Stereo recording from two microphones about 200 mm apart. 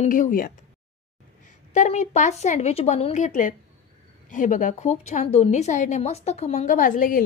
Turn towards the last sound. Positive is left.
turn(degrees=45)  # may be behind; listen again after turning